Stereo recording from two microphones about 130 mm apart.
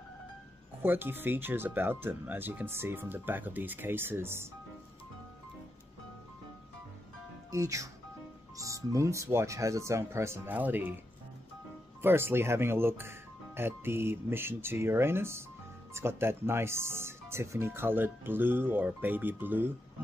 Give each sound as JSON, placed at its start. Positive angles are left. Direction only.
{"t": 0.8, "sound": "speech", "side_deg": -15}
{"t": 7.5, "sound": "speech", "side_deg": -25}
{"t": 12.0, "sound": "speech", "side_deg": -15}